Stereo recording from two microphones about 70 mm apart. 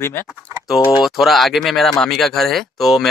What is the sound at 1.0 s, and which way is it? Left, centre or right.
Speech, centre.